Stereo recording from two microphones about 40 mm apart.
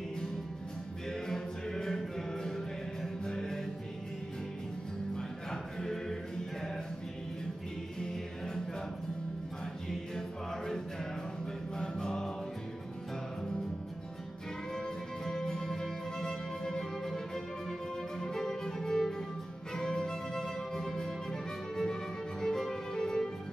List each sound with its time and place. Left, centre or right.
1.3 s music: centre
5.1 s music: centre
8.0 s music: centre
11.8 s choir: centre
14.8 s music: centre
18.2 s music: centre